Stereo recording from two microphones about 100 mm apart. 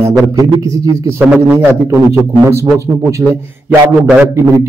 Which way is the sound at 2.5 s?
30° right (ahead or behind).